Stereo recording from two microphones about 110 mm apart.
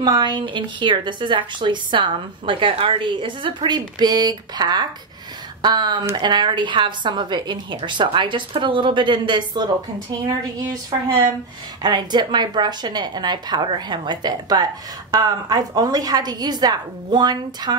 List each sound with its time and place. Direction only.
0.0 s a woman's voice: 40° right (ahead or behind)